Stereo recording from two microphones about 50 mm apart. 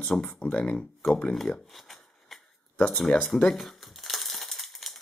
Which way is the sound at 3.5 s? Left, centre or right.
Centre.